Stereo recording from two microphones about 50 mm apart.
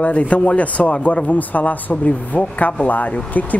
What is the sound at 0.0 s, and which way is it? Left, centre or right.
Speech, left.